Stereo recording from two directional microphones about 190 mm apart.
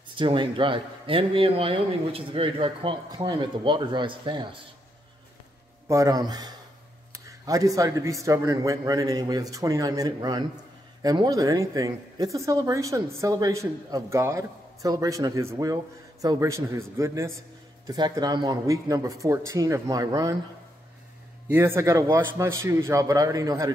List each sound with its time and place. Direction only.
0.1 s speech: 25° right (ahead or behind)
5.9 s speech: 20° right (ahead or behind)
21.5 s speech: 10° right (ahead or behind)